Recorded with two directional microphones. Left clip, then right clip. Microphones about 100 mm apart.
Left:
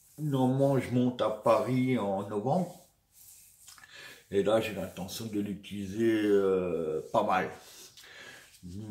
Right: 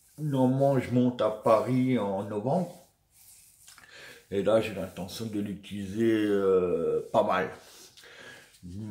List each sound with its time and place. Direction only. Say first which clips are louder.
0.3 s speech: right 3 dB; 15° right (ahead or behind)
3.9 s speech: left 1 dB; 20° right (ahead or behind)